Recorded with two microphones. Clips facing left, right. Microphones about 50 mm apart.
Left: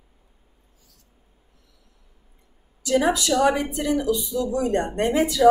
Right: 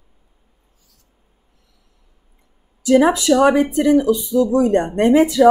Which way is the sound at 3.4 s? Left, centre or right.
Right.